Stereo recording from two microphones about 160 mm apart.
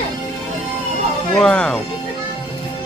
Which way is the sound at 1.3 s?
5° left (ahead or behind).